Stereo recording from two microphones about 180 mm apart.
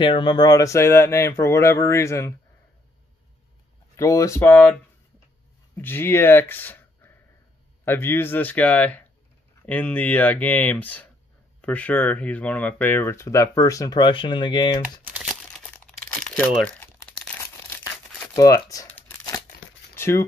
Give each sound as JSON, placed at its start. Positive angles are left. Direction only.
{"t": 0.0, "sound": "speech", "side_deg": 25}
{"t": 3.9, "sound": "speech", "side_deg": 20}
{"t": 5.8, "sound": "speech", "side_deg": 10}
{"t": 15.1, "sound": "crumpling", "side_deg": 0}
{"t": 16.3, "sound": "speech", "side_deg": 10}
{"t": 18.3, "sound": "crumpling", "side_deg": 20}
{"t": 20.0, "sound": "speech", "side_deg": 15}